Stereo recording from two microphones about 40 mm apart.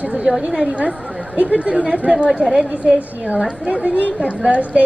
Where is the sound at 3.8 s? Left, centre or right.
Right.